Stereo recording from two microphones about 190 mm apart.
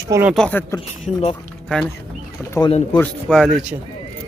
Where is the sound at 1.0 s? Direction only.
35° left (ahead or behind).